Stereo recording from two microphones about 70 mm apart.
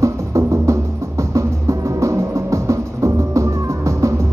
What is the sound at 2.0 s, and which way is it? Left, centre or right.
Music, right.